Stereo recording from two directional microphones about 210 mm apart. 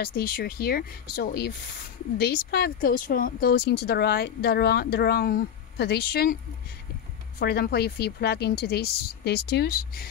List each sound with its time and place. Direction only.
0.0 s speech: 45° left (ahead or behind)
7.3 s speech: 50° left (ahead or behind)